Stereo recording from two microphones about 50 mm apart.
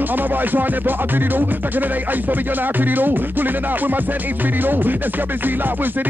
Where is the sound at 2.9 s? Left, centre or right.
Right.